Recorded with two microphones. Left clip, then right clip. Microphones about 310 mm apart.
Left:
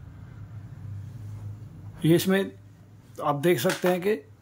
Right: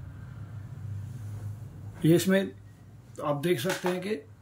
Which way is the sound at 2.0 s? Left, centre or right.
Centre.